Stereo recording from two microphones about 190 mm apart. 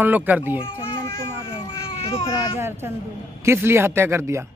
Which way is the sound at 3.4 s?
15° right (ahead or behind).